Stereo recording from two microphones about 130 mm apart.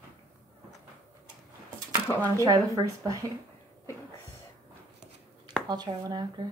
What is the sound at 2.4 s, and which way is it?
Speech, 30° right (ahead or behind).